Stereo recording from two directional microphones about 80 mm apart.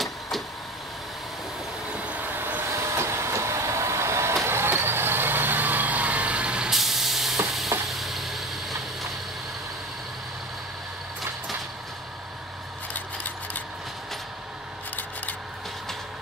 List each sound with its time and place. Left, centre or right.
1.9 s vehicle: centre
2.8 s vehicle: right; by 8.7 s centre
12.9 s vehicle: left